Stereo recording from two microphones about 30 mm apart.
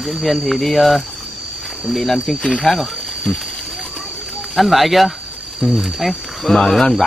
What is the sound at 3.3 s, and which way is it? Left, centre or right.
Speech, left.